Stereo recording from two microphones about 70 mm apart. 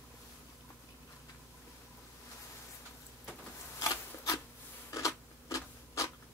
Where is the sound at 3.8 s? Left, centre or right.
Left.